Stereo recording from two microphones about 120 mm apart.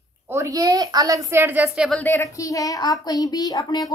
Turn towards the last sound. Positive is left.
turn(degrees=30)  # may be behind; listen again after turning